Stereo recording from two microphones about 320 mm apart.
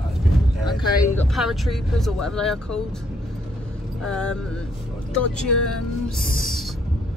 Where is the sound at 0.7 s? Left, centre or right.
Centre.